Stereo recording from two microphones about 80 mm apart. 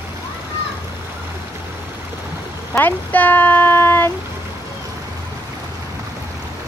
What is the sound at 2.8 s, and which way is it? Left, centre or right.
Speech, left.